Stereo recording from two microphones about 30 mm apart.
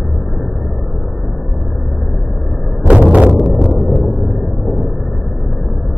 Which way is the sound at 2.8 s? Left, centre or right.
Right.